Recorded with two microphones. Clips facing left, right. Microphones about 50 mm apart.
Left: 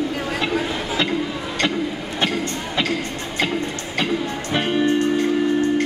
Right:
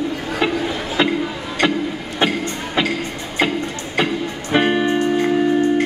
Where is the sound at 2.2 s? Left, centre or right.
Centre.